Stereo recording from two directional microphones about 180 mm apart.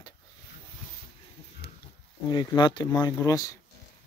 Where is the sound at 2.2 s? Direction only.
25° left (ahead or behind).